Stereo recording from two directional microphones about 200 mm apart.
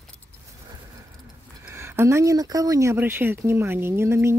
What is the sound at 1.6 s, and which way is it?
Speech, 10° right (ahead or behind).